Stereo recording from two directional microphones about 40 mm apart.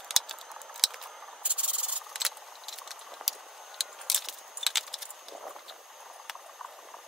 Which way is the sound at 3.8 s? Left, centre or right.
Centre.